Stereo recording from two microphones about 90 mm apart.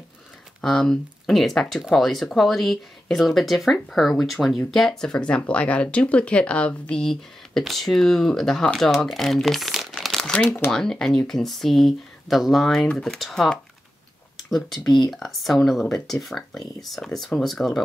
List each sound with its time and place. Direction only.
0.6 s speech: 5° left (ahead or behind)
9.9 s crumpling: 5° left (ahead or behind)
10.4 s speech: 20° left (ahead or behind)
10.7 s speech: 5° left (ahead or behind)
14.9 s speech: 55° left (ahead or behind)
15.1 s speech: centre (ahead or behind)